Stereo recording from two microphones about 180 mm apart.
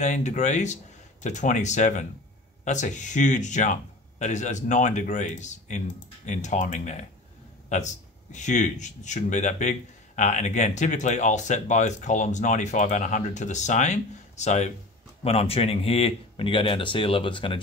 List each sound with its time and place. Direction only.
0.0 s speech: 40° left (ahead or behind)